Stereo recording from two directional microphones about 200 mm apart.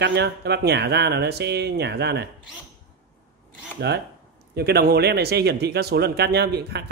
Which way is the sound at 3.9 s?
55° right (ahead or behind).